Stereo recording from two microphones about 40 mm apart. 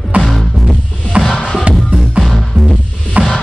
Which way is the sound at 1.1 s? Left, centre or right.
Right.